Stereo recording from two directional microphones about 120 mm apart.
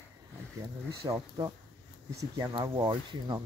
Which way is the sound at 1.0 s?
25° right (ahead or behind).